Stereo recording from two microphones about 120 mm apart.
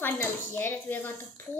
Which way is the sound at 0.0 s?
20° left (ahead or behind).